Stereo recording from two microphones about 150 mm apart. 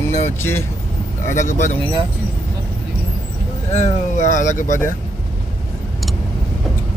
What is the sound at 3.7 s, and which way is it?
Speech, 50° left (ahead or behind).